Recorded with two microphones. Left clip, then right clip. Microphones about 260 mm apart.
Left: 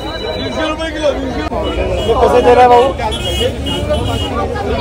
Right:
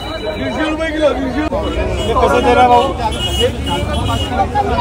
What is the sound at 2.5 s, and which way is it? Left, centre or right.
Speech, right.